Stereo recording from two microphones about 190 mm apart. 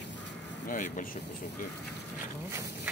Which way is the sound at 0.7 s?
45° left (ahead or behind).